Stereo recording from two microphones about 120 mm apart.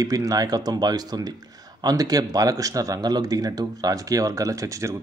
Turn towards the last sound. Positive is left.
turn(degrees=-25)  # may be behind; listen again after turning